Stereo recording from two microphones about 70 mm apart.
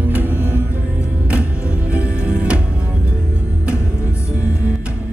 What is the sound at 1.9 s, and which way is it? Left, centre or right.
Music, centre.